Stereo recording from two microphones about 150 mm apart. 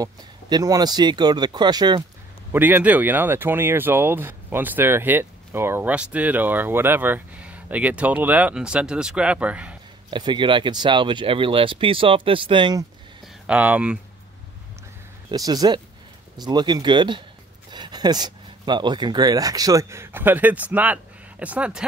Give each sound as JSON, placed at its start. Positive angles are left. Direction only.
{"t": 0.0, "sound": "speech", "side_deg": -25}
{"t": 2.5, "sound": "speech", "side_deg": -10}
{"t": 10.1, "sound": "speech", "side_deg": -30}
{"t": 13.5, "sound": "speech", "side_deg": -10}
{"t": 15.3, "sound": "speech", "side_deg": -25}